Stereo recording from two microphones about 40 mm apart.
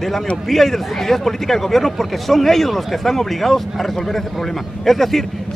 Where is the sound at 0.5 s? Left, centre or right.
Centre.